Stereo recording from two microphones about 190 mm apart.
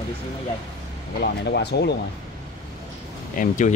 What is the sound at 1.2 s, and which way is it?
Speech, 60° left (ahead or behind).